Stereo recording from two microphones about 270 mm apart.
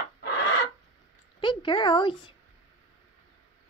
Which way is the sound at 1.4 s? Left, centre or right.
Centre.